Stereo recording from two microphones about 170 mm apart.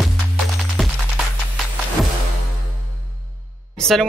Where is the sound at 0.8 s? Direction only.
Centre (ahead or behind).